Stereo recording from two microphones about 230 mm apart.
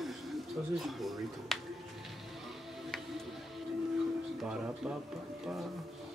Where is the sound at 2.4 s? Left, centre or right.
Centre.